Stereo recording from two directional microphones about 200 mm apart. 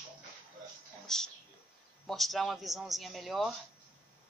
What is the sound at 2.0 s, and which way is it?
A man's voice, centre (ahead or behind).